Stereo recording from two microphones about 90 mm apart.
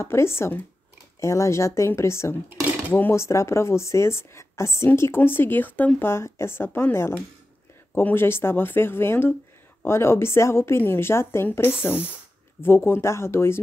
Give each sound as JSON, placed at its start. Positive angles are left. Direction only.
{"t": 0.0, "sound": "speech", "side_deg": 30}